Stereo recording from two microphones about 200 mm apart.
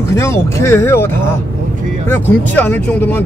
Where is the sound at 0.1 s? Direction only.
15° left (ahead or behind).